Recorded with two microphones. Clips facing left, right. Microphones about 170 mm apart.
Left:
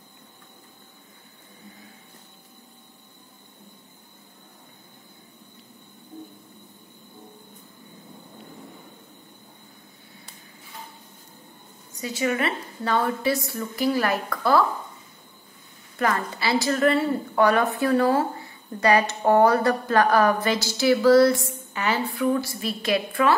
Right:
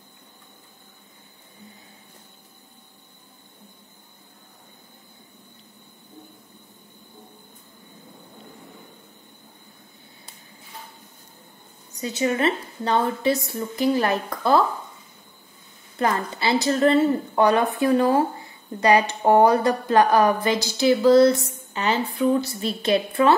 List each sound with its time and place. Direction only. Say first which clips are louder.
12.0 s a woman's voice: right 3 dB; 20° right (ahead or behind)
16.0 s a woman's voice: right 1 dB; 25° right (ahead or behind)